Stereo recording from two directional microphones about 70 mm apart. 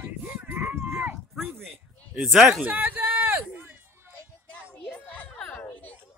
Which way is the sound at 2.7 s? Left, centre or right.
Right.